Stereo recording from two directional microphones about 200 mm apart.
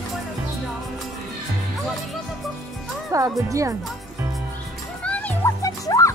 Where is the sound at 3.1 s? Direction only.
15° right (ahead or behind).